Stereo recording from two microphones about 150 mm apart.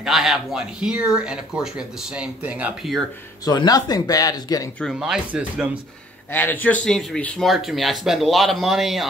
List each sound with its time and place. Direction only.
0.0 s speech: centre (ahead or behind)
3.4 s speech: 25° left (ahead or behind)
4.9 s speech: 5° right (ahead or behind)
6.3 s speech: 15° left (ahead or behind)